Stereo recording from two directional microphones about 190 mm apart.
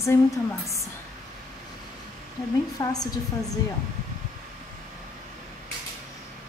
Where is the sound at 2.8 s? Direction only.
20° left (ahead or behind).